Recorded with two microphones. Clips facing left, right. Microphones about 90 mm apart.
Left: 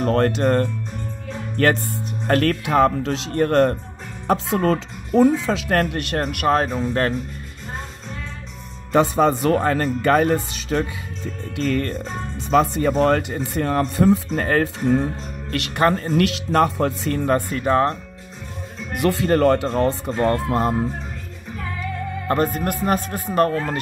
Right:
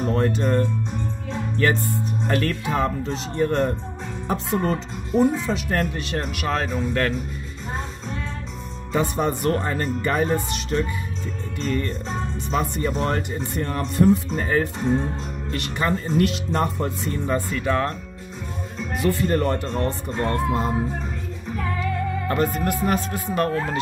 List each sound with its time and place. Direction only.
0.0 s speech: 70° left (ahead or behind)
4.3 s speech: 90° left; by 6.2 s 60° left (ahead or behind)
6.2 s speech: 45° left (ahead or behind)
8.9 s speech: 85° left
11.5 s music: 75° left (ahead or behind)
12.4 s speech: 90° left
17.3 s speech: 45° left (ahead or behind)
18.9 s speech: 85° left
20.2 s speech: 75° left (ahead or behind)
22.3 s speech: 40° left (ahead or behind)